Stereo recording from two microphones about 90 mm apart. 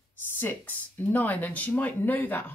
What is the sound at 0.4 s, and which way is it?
Speech, 20° left (ahead or behind).